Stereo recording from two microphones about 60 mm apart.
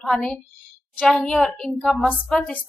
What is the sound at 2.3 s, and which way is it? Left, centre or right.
Speech, centre.